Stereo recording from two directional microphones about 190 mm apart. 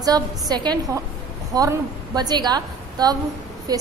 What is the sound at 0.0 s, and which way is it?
A woman's voice, 20° right (ahead or behind).